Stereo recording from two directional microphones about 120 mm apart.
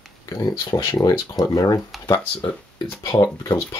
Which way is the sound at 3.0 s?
30° left (ahead or behind).